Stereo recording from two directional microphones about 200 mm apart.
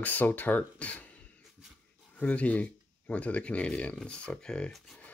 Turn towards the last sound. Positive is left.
turn(degrees=5)  # may be behind; listen again after turning